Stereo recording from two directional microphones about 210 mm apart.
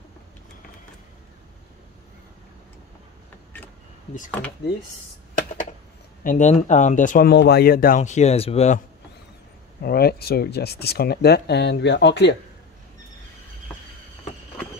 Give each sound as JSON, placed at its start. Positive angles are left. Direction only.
{"t": 6.2, "sound": "speech", "side_deg": 35}
{"t": 9.8, "sound": "speech", "side_deg": 50}